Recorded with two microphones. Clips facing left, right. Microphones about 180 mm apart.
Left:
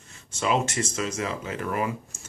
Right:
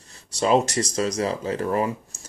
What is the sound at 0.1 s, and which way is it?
Speech, 35° right (ahead or behind).